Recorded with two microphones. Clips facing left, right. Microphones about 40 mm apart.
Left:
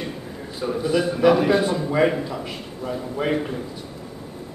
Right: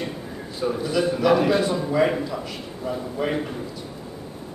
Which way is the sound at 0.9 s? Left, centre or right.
Centre.